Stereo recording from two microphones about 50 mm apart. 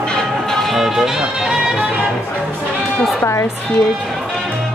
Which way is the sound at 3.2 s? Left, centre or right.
Left.